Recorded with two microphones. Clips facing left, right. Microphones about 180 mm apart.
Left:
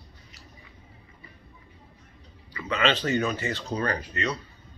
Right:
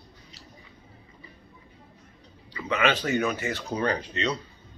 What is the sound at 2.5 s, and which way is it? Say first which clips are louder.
Speech: right 1 dB; 10° right (ahead or behind).